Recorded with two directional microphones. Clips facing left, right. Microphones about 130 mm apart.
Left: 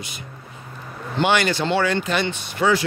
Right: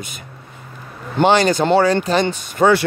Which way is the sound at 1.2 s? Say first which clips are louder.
Right 6 dB; 40° right (ahead or behind).